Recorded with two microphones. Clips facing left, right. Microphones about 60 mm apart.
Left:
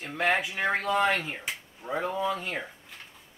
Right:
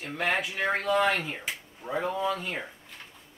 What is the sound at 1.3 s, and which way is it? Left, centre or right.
Speech, centre.